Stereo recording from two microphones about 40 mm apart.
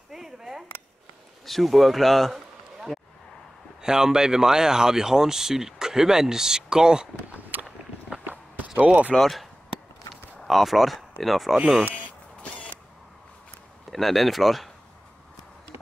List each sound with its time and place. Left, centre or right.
0.1 s a sound: centre
1.4 s a man's voice: centre
3.8 s speech: centre
7.5 s biting: right
8.7 s speech: right
9.2 s speech: centre
13.8 s speech: centre